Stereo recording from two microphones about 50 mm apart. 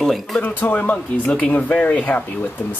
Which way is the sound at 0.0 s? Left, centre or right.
Centre.